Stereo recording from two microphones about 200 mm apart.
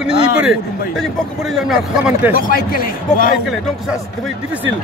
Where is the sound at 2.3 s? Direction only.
45° left (ahead or behind).